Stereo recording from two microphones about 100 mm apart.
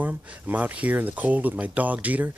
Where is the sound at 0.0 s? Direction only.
15° right (ahead or behind).